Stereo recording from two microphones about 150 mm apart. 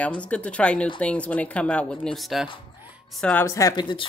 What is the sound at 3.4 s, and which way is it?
Speech, 20° left (ahead or behind).